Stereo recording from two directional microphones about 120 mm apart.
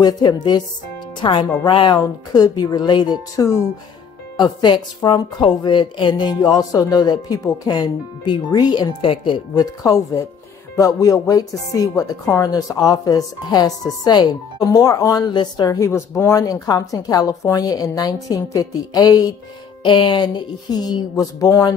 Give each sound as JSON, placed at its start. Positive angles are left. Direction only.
{"t": 0.0, "sound": "speech", "side_deg": 35}
{"t": 1.2, "sound": "speech", "side_deg": 50}
{"t": 2.0, "sound": "speech", "side_deg": 30}
{"t": 9.8, "sound": "speech", "side_deg": 30}